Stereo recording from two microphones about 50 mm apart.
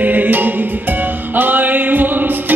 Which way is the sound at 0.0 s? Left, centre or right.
Right.